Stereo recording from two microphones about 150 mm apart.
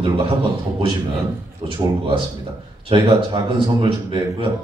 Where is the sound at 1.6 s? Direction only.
35° right (ahead or behind).